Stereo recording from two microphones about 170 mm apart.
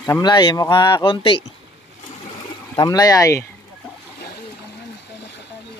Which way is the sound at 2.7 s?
20° left (ahead or behind).